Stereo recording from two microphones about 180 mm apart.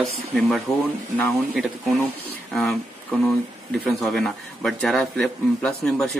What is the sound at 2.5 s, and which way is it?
Speech, centre (ahead or behind).